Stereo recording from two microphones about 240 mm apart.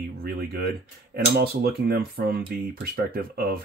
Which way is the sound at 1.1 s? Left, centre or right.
Right.